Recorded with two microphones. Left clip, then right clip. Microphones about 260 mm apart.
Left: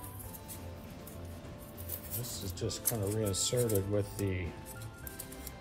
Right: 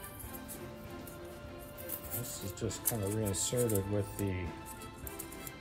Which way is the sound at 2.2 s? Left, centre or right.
Left.